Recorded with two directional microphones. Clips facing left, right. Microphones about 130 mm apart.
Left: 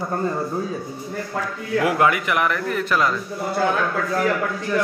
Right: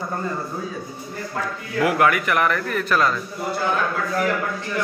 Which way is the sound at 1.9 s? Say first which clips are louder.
Right 1 dB; 20° left (ahead or behind).